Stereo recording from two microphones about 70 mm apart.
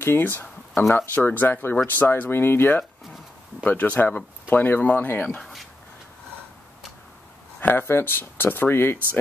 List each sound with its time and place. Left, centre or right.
0.0 s speech: left
3.6 s speech: left
7.6 s speech: left